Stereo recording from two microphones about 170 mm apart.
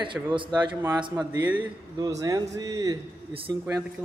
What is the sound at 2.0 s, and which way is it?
A man's voice, 20° right (ahead or behind).